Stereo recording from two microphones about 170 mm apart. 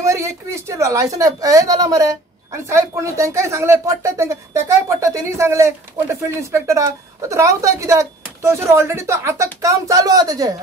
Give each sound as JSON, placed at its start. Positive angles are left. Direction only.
{"t": 0.0, "sound": "a woman's voice", "side_deg": -15}